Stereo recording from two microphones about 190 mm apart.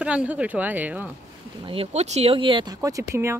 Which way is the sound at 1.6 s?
30° right (ahead or behind).